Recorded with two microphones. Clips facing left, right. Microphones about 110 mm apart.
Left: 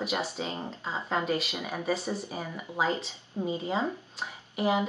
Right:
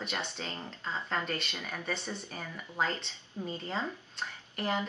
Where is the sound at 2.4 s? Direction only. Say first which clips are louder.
Left 3 dB; 15° left (ahead or behind).